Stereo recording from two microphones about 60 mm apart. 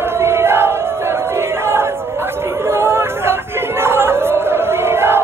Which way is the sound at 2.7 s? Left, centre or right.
Right.